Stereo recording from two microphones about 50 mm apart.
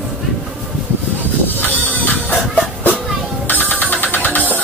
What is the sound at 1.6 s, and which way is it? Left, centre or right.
Music, left.